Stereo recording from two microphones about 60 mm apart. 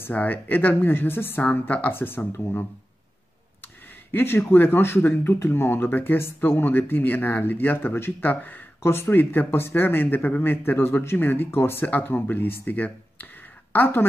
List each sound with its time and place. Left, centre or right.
0.1 s speech: left
1.4 s speech: left
4.1 s speech: left